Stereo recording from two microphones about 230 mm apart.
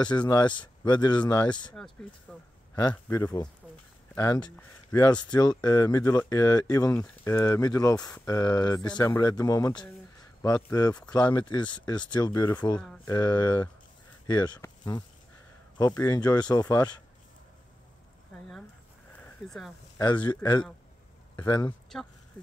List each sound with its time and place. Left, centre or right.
0.3 s speech: centre
2.3 s speech: centre
2.7 s speech: centre
19.1 s a sound: centre
20.0 s speech: centre
21.6 s speech: centre